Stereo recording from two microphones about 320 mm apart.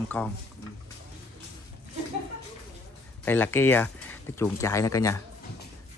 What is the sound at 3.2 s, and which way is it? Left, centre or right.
Speech, centre.